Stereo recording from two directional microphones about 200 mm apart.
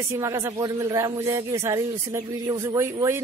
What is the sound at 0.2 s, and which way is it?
Speech, 15° right (ahead or behind).